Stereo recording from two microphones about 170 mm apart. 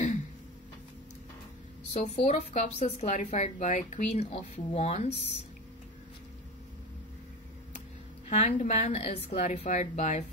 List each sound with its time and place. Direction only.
2.0 s a woman's voice: 40° left (ahead or behind)
8.3 s a woman's voice: 45° left (ahead or behind)